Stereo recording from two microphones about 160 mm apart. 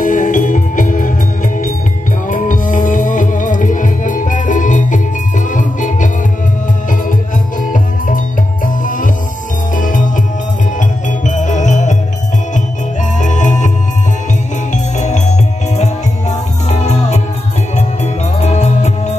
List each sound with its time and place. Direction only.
0.0 s music: 55° left (ahead or behind)
2.2 s music: 55° left (ahead or behind)
7.6 s music: 55° left (ahead or behind)
13.2 s music: 50° left (ahead or behind)
14.7 s music: 50° left (ahead or behind)